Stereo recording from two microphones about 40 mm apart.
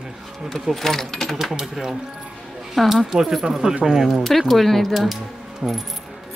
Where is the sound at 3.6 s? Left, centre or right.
Centre.